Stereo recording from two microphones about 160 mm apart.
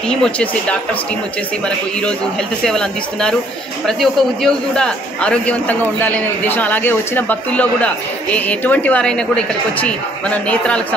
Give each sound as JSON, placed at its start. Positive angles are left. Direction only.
{"t": 0.1, "sound": "a woman's voice", "side_deg": 5}
{"t": 2.6, "sound": "a woman's voice", "side_deg": 5}